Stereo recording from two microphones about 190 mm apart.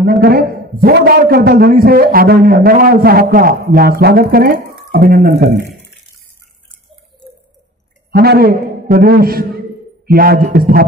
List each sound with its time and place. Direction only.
0.0 s a man's voice: 50° right (ahead or behind)
8.1 s a man's voice: 55° right (ahead or behind)